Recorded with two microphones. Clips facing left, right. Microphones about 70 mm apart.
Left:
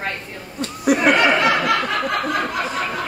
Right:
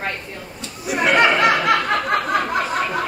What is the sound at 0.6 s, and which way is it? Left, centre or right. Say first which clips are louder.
Chatter: left 9 dB; left.